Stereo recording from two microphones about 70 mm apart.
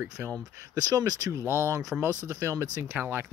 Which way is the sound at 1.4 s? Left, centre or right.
Right.